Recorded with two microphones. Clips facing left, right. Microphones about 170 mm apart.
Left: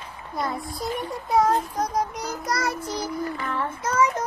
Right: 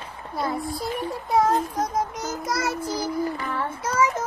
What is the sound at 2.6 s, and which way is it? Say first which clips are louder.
Child singing: right 1 dB; 25° right (ahead or behind).